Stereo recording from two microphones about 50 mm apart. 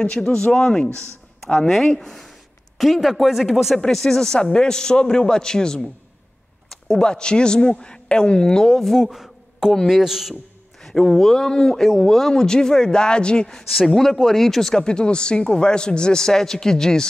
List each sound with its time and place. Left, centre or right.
0.3 s a man's voice: centre
2.0 s speech: centre
3.7 s a man's voice: centre
9.0 s a sound: centre
9.8 s speech: centre
10.8 s a man's voice: centre